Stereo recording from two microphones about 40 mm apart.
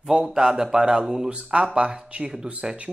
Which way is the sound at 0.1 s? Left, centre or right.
Centre.